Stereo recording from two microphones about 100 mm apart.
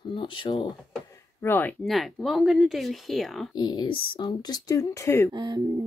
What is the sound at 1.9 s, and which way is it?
Speech, centre (ahead or behind).